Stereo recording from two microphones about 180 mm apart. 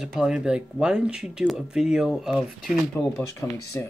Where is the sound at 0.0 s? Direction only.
5° right (ahead or behind).